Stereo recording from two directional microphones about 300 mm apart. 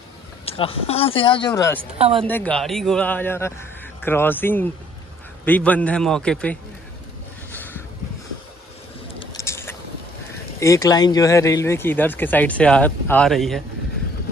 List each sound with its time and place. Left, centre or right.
0.5 s speech: centre
1.8 s a woman's voice: centre
2.2 s a man's voice: centre
7.5 s vehicle: centre
9.3 s vehicle: centre
10.6 s speech: centre